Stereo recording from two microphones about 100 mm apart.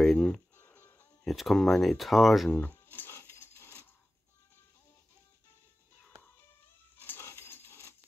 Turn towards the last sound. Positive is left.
turn(degrees=25)  # may be behind; listen again after turning